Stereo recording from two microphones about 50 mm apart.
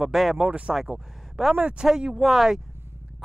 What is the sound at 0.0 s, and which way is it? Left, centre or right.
Speech, centre.